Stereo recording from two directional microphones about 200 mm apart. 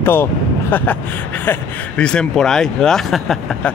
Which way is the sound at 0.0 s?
10° left (ahead or behind).